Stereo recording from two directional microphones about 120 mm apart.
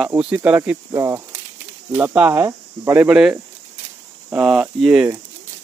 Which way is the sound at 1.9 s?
15° right (ahead or behind).